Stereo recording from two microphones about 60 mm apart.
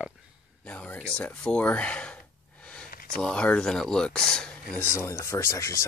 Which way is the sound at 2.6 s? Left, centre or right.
Centre.